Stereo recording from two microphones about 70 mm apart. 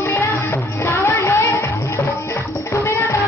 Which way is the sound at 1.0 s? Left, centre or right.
Left.